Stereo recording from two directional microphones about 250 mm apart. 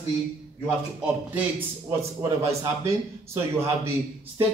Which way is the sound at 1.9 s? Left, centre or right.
Centre.